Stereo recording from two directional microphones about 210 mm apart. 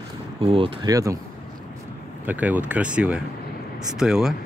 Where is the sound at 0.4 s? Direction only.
25° right (ahead or behind).